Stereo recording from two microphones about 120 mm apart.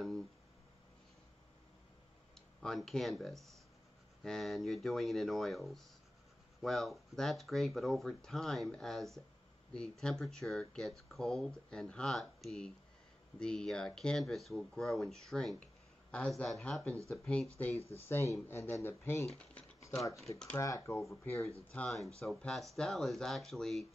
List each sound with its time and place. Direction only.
2.6 s speech: 5° left (ahead or behind)
17.7 s speech: 60° left (ahead or behind)
18.0 s speech: 20° left (ahead or behind)
19.2 s speech: 5° left (ahead or behind)
20.5 s speech: 30° left (ahead or behind)
21.6 s speech: 10° left (ahead or behind)